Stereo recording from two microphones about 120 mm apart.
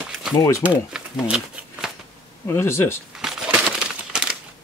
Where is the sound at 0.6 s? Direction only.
5° right (ahead or behind).